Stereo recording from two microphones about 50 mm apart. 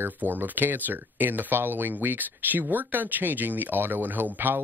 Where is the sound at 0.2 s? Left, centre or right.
Right.